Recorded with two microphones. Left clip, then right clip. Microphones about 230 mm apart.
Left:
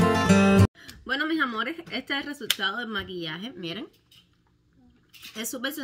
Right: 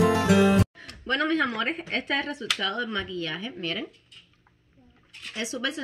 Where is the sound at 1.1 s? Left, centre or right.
Centre.